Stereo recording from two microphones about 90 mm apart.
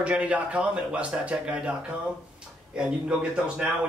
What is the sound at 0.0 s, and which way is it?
Speech, 15° right (ahead or behind).